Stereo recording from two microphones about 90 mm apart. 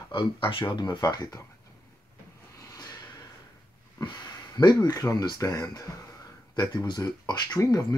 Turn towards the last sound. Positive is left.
turn(degrees=45)  # may be behind; listen again after turning